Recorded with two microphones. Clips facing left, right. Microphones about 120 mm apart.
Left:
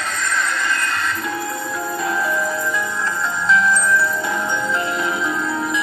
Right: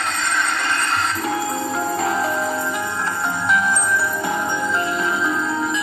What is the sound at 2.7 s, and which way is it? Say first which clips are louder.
Music: left 1 dB; 65° right (ahead or behind).